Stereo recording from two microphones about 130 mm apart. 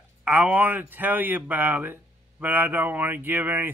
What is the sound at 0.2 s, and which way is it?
Speech, 10° right (ahead or behind).